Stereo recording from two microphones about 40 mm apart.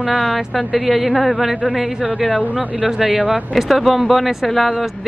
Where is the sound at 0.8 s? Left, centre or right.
Right.